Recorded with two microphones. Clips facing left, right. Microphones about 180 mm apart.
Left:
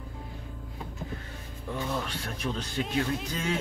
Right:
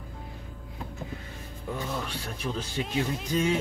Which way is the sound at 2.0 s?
Centre (ahead or behind).